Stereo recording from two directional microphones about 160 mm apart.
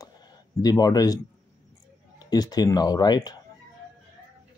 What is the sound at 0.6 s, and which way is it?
Speech, 25° left (ahead or behind).